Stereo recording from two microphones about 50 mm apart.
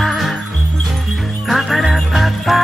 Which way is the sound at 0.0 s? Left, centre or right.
Centre.